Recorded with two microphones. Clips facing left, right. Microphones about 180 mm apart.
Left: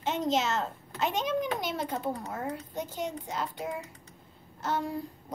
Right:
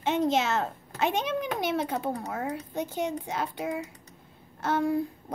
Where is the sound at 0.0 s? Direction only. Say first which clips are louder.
Right 3 dB; 55° right (ahead or behind).